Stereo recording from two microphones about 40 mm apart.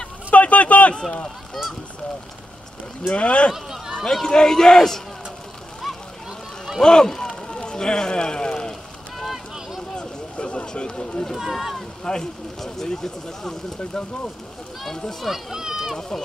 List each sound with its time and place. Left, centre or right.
0.3 s a sound: left
3.1 s speech: left
3.5 s speech: centre
3.9 s speech: centre
6.8 s speech: centre
9.9 s a sound: left
11.3 s speech: centre
12.0 s speech: centre
15.2 s speech: centre